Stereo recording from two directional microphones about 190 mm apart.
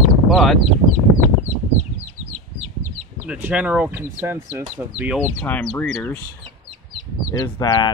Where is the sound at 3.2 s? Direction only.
5° right (ahead or behind).